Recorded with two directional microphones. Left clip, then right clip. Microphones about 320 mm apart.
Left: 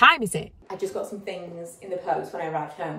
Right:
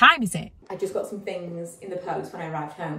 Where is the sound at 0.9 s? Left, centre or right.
Right.